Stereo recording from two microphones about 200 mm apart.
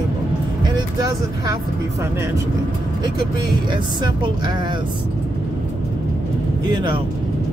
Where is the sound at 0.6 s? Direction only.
20° right (ahead or behind).